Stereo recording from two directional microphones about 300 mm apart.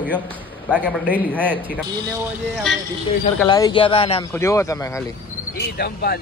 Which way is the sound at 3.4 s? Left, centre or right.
Centre.